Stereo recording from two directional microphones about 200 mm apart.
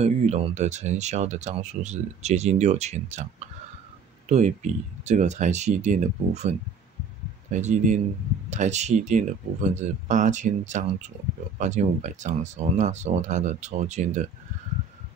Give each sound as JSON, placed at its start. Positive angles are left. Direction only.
{"t": 0.0, "sound": "speech", "side_deg": -35}
{"t": 7.5, "sound": "speech", "side_deg": -35}